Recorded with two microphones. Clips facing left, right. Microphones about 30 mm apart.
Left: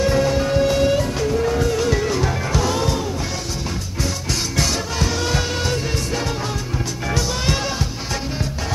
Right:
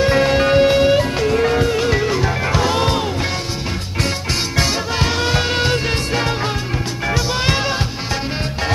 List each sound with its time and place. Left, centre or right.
0.0 s music: right
0.7 s music: right
2.4 s music: right
4.3 s music: right
7.1 s music: right